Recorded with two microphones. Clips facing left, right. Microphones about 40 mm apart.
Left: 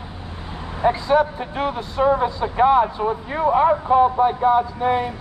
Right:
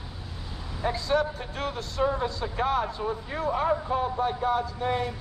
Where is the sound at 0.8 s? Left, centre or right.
Left.